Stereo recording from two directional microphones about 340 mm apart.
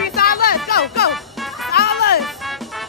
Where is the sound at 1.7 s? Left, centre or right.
Left.